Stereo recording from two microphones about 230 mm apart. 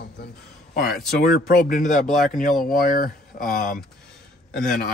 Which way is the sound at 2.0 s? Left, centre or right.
Centre.